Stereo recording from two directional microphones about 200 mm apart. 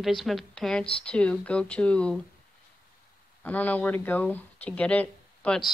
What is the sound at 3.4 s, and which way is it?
Speech, 10° left (ahead or behind).